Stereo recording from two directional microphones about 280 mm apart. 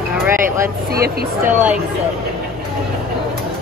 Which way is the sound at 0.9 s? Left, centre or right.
Right.